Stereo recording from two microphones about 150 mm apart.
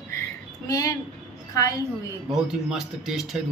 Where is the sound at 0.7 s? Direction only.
20° left (ahead or behind).